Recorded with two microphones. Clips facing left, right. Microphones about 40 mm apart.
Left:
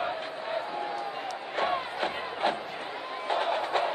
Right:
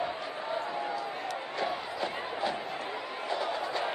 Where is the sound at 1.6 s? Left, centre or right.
Left.